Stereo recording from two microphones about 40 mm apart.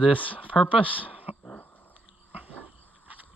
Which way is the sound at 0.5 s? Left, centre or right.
Left.